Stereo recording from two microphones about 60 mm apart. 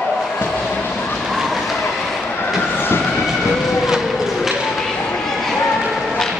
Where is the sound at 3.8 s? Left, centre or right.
Centre.